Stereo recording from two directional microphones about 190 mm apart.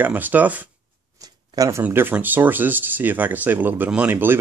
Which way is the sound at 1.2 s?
20° right (ahead or behind).